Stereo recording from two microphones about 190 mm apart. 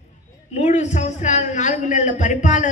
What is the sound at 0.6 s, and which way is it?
A man's voice, 35° left (ahead or behind).